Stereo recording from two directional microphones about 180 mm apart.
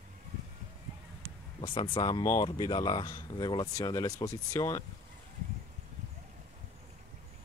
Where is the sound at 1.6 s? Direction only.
25° left (ahead or behind).